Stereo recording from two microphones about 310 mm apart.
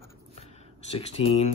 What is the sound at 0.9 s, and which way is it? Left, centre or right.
Speech, centre.